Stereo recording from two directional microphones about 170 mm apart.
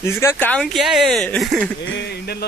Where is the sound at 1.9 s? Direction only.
75° left (ahead or behind).